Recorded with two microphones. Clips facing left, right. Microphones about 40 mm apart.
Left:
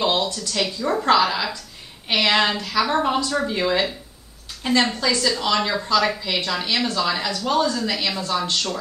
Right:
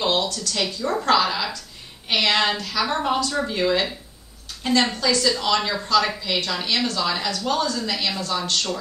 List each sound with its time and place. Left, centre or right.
0.0 s speech: centre
4.9 s speech: centre